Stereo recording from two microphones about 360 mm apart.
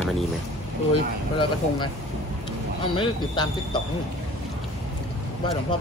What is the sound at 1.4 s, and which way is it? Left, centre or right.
Speech, centre.